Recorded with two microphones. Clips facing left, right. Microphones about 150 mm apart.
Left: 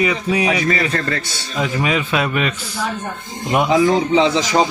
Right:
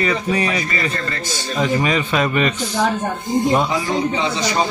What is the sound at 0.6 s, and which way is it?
Speech, 80° left.